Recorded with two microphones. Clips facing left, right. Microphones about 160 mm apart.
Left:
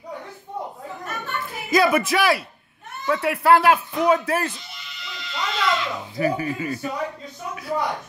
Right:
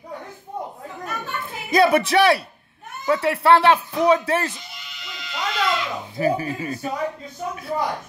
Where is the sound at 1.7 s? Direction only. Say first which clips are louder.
Right 2 dB; 30° right (ahead or behind).